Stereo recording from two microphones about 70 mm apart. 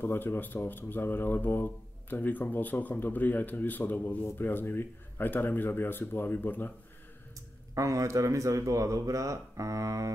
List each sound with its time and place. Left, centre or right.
0.0 s speech: left
7.7 s a man's voice: right